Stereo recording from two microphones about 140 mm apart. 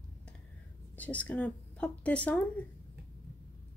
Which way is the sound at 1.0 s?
10° left (ahead or behind).